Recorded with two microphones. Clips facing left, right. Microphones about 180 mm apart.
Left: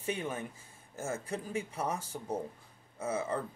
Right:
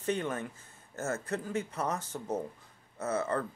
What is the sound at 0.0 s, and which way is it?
A man's voice, 10° left (ahead or behind).